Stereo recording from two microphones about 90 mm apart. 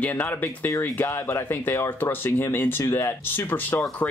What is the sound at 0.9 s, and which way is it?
Speech, 25° left (ahead or behind).